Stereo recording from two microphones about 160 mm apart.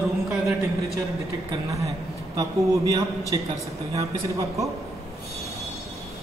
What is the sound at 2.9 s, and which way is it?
A man's voice, 20° right (ahead or behind).